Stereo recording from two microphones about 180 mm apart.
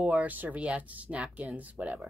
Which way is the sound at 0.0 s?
5° right (ahead or behind).